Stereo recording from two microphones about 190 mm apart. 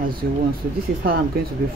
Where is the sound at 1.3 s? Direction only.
50° right (ahead or behind).